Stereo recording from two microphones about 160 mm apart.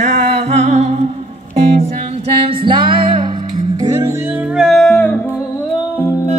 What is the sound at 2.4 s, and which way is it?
Music, 30° right (ahead or behind).